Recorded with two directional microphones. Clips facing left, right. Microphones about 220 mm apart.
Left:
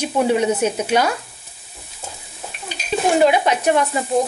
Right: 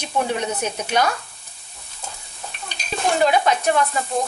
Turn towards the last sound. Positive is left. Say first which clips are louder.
# left 3 dB
turn(degrees=15)  # may be behind; listen again after turning